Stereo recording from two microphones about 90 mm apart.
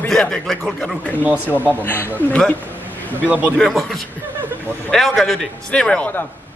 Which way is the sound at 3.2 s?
15° right (ahead or behind).